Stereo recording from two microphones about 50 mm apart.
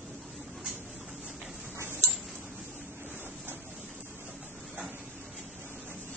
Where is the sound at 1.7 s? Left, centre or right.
Right.